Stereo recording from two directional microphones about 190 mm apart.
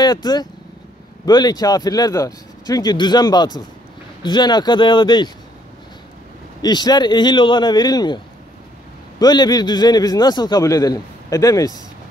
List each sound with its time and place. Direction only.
0.0 s a man's voice: 20° left (ahead or behind)
6.6 s a man's voice: 20° left (ahead or behind)
9.2 s a man's voice: 20° left (ahead or behind)